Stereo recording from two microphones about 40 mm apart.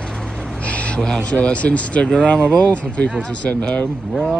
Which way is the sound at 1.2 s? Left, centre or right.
Left.